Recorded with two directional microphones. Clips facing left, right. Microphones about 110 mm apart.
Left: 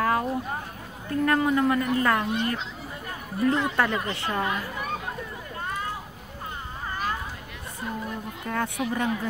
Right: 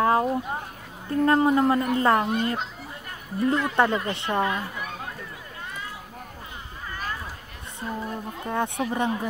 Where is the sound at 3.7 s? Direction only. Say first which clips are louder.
Right 3 dB; 25° right (ahead or behind).